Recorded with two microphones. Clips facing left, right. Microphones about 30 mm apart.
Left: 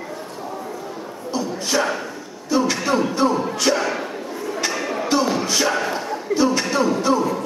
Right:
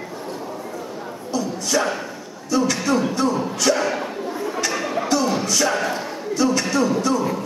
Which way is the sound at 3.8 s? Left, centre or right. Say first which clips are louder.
Right 1 dB; centre.